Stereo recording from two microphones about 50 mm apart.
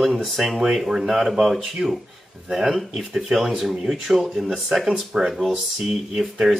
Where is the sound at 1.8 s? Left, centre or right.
Centre.